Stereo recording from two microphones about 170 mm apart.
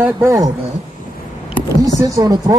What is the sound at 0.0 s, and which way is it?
Speech, 20° right (ahead or behind).